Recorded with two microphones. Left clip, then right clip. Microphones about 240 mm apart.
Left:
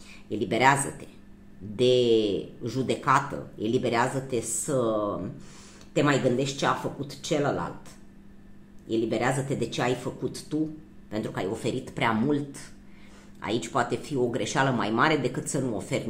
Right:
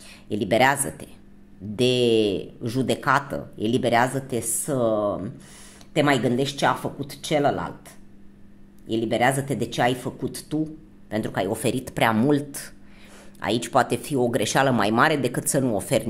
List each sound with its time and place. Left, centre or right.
0.3 s speech: right
8.8 s speech: right